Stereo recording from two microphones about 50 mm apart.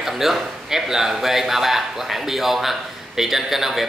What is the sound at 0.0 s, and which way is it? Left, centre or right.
A man's voice, centre.